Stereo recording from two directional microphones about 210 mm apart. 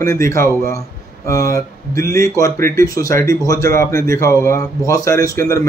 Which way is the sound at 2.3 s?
15° left (ahead or behind).